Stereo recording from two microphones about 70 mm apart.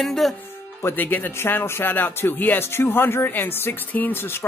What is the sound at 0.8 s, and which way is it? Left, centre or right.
Speech, left.